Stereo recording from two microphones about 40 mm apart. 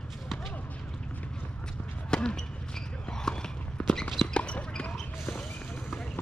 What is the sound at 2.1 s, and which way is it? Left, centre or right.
Basketball bounce, centre.